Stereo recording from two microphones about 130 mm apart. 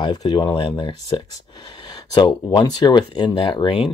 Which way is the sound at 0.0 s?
30° left (ahead or behind).